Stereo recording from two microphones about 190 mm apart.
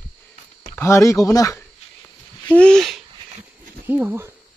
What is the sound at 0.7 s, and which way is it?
Speech, 15° left (ahead or behind).